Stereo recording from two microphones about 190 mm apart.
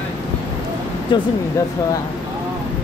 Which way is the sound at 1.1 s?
25° left (ahead or behind).